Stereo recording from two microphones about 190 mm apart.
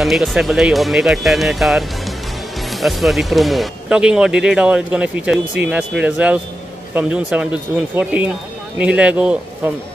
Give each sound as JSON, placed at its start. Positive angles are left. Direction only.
{"t": 0.0, "sound": "speech", "side_deg": 0}